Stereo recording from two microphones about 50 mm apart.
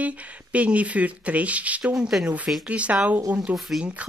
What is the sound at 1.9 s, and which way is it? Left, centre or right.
Speech, centre.